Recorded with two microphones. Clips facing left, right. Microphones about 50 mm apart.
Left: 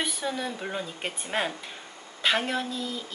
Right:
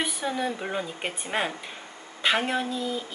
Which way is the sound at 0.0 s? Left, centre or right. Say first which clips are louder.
Right 2 dB; centre.